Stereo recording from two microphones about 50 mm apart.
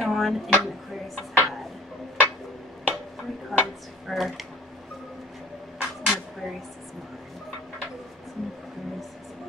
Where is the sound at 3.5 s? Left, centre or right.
Centre.